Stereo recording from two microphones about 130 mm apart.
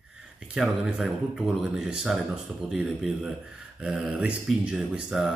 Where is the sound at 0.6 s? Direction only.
5° right (ahead or behind).